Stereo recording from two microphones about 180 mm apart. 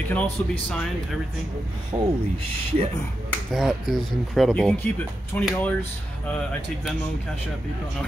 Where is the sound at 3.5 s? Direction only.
Centre (ahead or behind).